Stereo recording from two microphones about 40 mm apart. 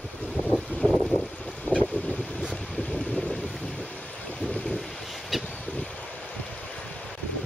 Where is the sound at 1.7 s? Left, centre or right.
Left.